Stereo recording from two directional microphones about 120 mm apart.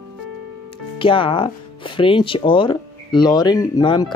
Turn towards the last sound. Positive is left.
turn(degrees=35)  # may be behind; listen again after turning